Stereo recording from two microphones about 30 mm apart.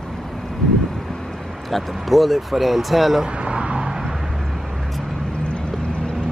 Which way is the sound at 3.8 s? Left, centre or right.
Right.